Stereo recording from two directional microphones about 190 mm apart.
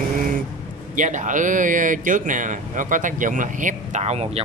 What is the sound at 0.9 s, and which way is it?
Speech, 40° right (ahead or behind).